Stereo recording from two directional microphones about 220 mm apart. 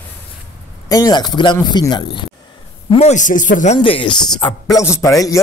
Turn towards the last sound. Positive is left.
turn(degrees=15)  # may be behind; listen again after turning